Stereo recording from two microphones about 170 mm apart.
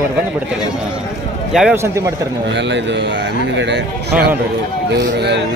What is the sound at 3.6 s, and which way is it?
Speech, 80° right.